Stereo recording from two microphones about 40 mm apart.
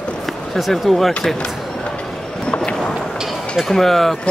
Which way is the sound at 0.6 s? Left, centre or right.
Centre.